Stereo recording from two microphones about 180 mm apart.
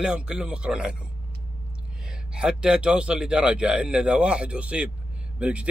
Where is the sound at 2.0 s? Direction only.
5° right (ahead or behind).